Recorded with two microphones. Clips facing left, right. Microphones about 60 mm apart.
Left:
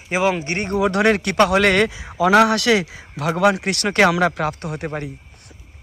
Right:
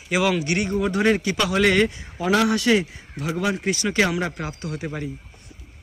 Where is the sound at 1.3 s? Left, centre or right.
Left.